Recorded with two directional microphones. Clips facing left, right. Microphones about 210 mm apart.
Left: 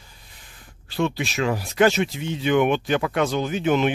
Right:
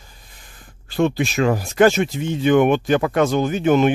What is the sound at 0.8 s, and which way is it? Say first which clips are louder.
Speech: right 5 dB; 50° right (ahead or behind).